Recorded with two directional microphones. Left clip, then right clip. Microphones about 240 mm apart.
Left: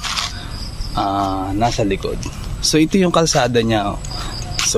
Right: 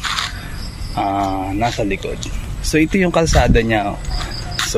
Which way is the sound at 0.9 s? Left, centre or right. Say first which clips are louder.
Even; centre.